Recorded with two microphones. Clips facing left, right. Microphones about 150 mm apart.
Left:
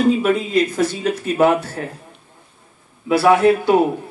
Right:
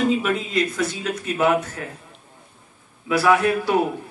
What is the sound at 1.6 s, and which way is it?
Speech, 35° left (ahead or behind).